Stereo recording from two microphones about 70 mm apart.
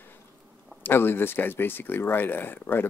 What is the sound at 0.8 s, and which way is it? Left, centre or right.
Speech, left.